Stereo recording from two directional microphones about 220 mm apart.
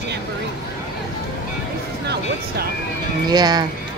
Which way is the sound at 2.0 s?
45° right (ahead or behind).